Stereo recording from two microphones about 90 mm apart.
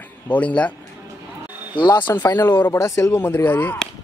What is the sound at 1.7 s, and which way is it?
Speech, 60° left (ahead or behind).